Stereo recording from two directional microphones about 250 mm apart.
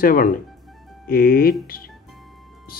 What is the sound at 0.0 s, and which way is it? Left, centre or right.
Speech, left.